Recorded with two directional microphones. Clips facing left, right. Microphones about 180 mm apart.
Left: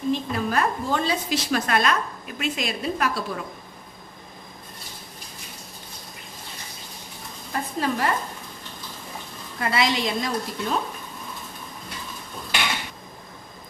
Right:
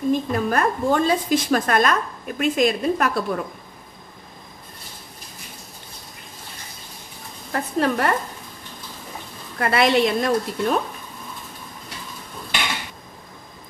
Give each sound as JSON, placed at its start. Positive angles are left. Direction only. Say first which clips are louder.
{"t": 0.1, "sound": "a woman's voice", "louder": "right 3 dB", "side_deg": -50}
{"t": 7.5, "sound": "a woman's voice", "louder": "right 4 dB", "side_deg": -60}
{"t": 9.6, "sound": "a woman's voice", "louder": "right 6 dB", "side_deg": -60}